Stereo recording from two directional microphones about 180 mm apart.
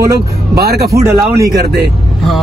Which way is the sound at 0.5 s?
60° right (ahead or behind).